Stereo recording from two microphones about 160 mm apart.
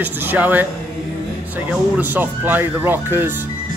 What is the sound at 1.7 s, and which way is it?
Speech, 10° right (ahead or behind).